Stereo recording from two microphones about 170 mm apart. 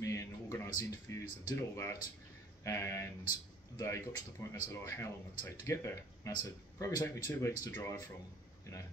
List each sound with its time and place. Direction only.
0.0 s speech: 20° left (ahead or behind)